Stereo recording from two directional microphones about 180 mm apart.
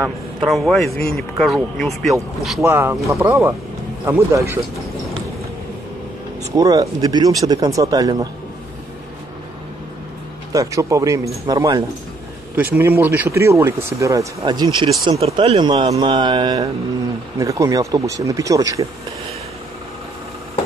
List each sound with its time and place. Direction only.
0.5 s a man's voice: centre (ahead or behind)
2.6 s speech: 15° right (ahead or behind)
6.5 s speech: 20° right (ahead or behind)
10.5 s speech: 20° right (ahead or behind)